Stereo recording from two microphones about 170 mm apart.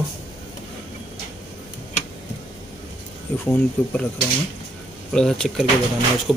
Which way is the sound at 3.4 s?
10° left (ahead or behind).